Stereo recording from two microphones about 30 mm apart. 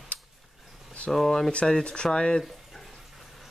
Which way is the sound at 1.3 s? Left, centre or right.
Centre.